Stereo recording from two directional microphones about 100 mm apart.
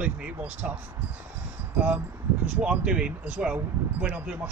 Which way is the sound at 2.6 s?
10° right (ahead or behind).